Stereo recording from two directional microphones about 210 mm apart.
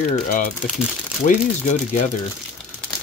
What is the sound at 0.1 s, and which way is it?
Speech, 40° left (ahead or behind).